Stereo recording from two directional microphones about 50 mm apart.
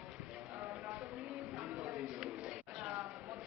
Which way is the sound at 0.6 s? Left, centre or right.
Right.